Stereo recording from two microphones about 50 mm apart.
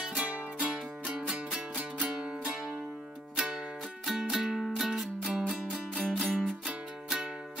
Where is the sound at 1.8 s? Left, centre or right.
Right.